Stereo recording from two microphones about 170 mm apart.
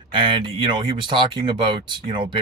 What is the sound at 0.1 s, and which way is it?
Speech, 30° right (ahead or behind).